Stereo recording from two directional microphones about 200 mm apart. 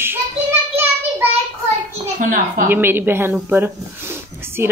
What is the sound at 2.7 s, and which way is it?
Speech, 10° right (ahead or behind).